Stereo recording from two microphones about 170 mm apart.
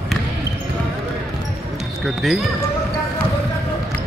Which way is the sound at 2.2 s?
Centre (ahead or behind).